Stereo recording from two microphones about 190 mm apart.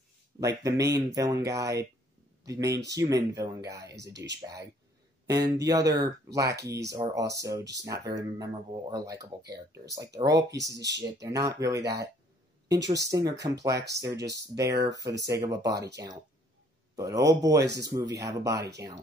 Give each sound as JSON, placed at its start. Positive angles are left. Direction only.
{"t": 0.4, "sound": "speech", "side_deg": -15}
{"t": 5.2, "sound": "speech", "side_deg": -20}